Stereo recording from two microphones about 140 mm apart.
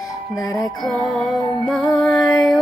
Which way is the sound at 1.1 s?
Centre (ahead or behind).